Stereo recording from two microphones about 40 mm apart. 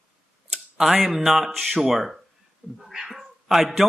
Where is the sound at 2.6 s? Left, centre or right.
Right.